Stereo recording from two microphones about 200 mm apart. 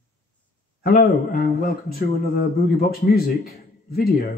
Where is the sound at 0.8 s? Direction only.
45° left (ahead or behind).